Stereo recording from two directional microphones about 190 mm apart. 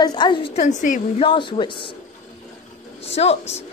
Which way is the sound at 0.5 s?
40° left (ahead or behind).